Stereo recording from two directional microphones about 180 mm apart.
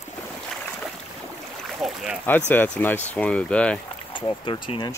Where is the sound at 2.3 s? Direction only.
10° left (ahead or behind).